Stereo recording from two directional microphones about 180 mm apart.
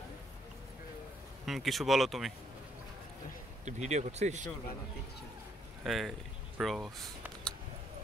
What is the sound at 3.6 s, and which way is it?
Speech, 40° right (ahead or behind).